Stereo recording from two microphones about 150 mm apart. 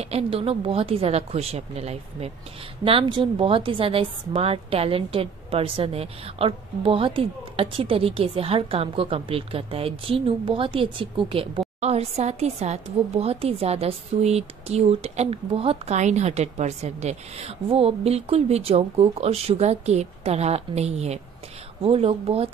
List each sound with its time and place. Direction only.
0.0 s a woman's voice: 45° right (ahead or behind)